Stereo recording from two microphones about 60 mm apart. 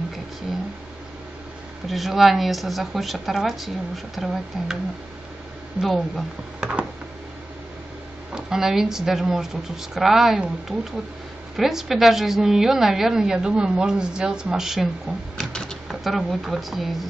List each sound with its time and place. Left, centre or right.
1.9 s a woman's voice: centre
5.8 s a woman's voice: centre
6.6 s a woman's voice: centre
8.3 s a woman's voice: centre
11.5 s a woman's voice: centre
15.5 s speech: centre
15.9 s a woman's voice: centre